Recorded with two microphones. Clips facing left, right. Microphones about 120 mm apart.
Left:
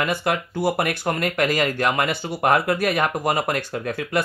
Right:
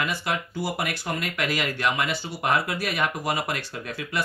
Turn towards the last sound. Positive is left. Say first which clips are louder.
# left 7 dB
turn(degrees=50)  # may be behind; listen again after turning